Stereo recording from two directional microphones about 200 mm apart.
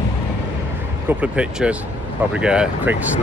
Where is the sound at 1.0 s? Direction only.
5° right (ahead or behind).